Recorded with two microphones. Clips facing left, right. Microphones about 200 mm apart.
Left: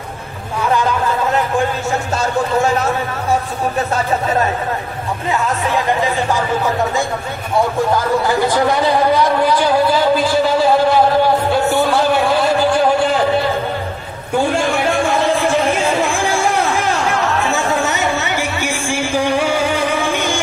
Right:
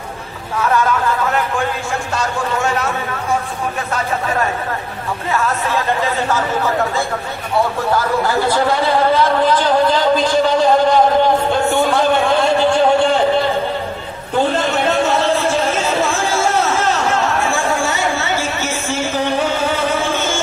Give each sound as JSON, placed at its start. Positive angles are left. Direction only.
{"t": 5.3, "sound": "speech", "side_deg": 15}
{"t": 8.8, "sound": "speech", "side_deg": 15}
{"t": 14.4, "sound": "a sound", "side_deg": 10}